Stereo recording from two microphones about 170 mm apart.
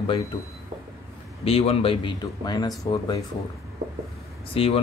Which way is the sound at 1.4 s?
35° left (ahead or behind).